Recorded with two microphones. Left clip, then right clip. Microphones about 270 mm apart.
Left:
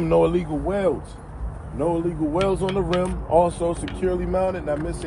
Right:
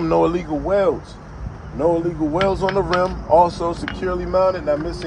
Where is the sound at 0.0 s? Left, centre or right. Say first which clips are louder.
Right 1 dB; right.